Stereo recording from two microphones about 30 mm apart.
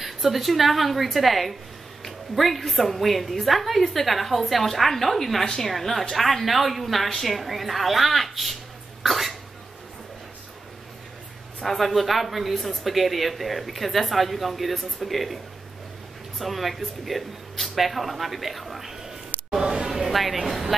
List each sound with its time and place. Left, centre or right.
0.0 s a woman's voice: centre
5.4 s a woman's voice: centre
5.7 s a woman's voice: centre
9.0 s cough: centre
11.6 s a woman's voice: centre
16.3 s speech: centre
19.7 s a sound: centre